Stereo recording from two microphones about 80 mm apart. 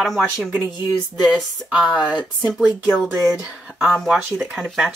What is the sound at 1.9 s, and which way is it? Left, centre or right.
Speech, left.